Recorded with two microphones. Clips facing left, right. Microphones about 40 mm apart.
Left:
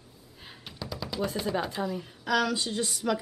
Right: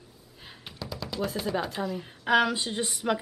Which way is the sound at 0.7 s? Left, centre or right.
Centre.